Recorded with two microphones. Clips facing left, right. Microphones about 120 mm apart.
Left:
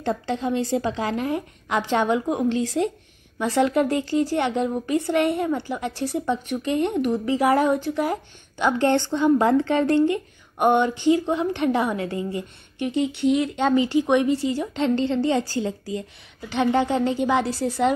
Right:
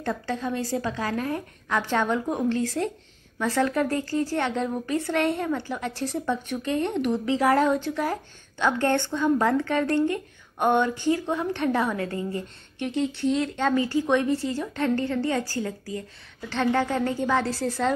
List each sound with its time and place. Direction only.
0.0 s speech: 25° left (ahead or behind)
9.9 s a woman's voice: 10° left (ahead or behind)